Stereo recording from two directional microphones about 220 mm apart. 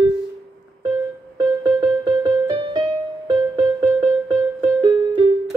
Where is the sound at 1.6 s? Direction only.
20° right (ahead or behind).